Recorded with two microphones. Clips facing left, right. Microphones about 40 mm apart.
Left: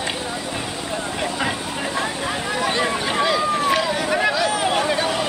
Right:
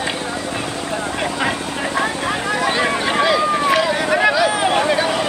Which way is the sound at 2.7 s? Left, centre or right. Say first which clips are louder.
Right 3 dB; centre.